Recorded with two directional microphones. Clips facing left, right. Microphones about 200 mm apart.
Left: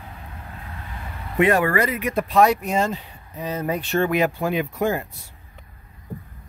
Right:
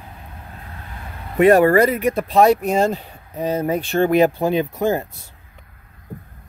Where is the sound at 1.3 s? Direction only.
40° right (ahead or behind).